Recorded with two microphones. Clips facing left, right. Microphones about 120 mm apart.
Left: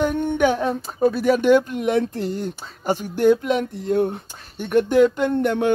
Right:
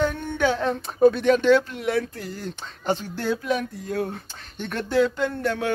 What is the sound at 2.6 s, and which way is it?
Speech, 10° left (ahead or behind).